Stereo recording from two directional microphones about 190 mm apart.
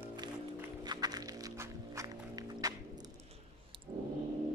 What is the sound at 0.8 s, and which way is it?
Music, 20° right (ahead or behind).